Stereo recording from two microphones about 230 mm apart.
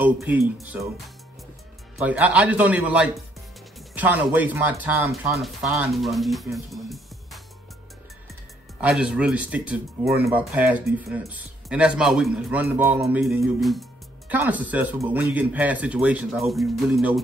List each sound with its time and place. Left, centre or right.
0.0 s speech: centre
8.8 s speech: centre